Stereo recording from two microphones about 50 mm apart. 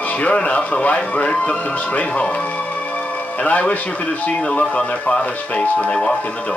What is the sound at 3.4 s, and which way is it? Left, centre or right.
Speech, left.